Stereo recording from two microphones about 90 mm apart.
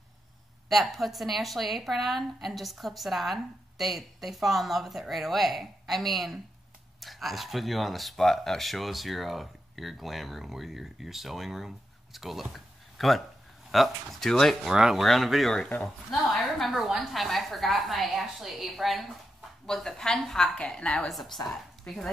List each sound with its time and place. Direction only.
0.7 s speech: centre (ahead or behind)